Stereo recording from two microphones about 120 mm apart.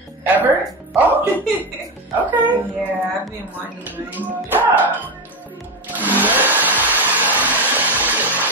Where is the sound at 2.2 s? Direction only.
15° right (ahead or behind).